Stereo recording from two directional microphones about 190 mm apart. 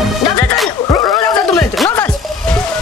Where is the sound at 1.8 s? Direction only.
10° left (ahead or behind).